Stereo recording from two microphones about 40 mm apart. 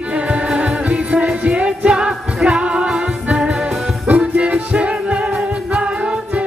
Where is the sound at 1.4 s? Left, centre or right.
Right.